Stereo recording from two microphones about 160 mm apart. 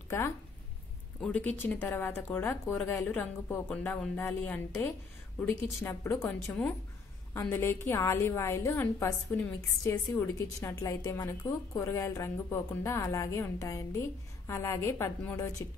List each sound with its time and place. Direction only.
1.2 s a woman's voice: 10° left (ahead or behind)